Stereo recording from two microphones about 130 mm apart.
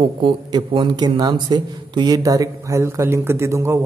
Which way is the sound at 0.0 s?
40° right (ahead or behind).